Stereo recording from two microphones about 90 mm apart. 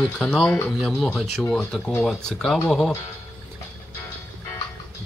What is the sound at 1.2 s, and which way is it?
Speech, 5° left (ahead or behind).